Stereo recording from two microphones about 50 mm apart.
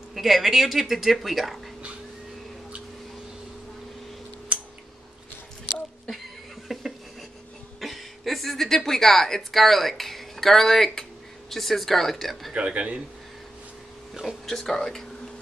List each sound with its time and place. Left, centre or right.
0.1 s speech: centre
6.7 s a sound: centre
7.8 s a woman's voice: centre
12.5 s a man's voice: right
14.4 s speech: centre